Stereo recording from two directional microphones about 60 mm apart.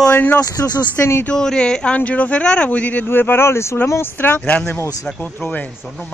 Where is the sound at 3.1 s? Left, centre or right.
Left.